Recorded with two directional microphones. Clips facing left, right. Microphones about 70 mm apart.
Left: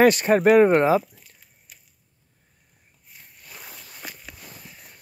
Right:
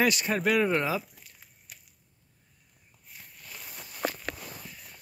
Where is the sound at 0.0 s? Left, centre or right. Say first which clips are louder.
Left 10 dB; left.